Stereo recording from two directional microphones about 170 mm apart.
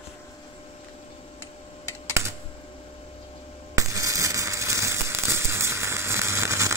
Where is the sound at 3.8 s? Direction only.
20° right (ahead or behind).